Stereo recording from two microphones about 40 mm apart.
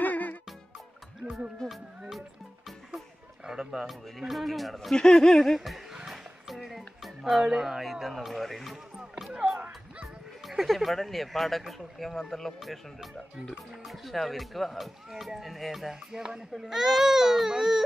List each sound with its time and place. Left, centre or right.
0.0 s music: left
1.7 s music: centre
3.4 s speech: centre
4.9 s speech: centre
6.0 s a sound: centre
7.0 s speech: centre
10.4 s speech: centre